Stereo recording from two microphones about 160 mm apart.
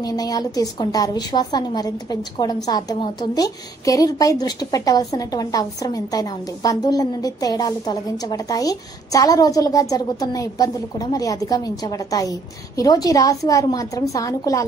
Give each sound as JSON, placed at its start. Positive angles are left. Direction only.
{"t": 0.0, "sound": "a woman's voice", "side_deg": 25}